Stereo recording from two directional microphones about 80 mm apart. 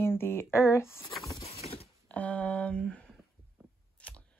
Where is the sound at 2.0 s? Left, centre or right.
Centre.